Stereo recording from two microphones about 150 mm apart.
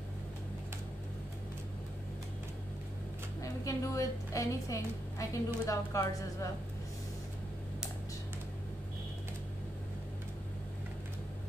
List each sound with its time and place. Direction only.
3.4 s a woman's voice: 20° left (ahead or behind)